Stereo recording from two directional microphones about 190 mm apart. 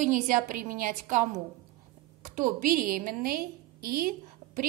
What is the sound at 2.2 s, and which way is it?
A woman's voice, 45° right (ahead or behind).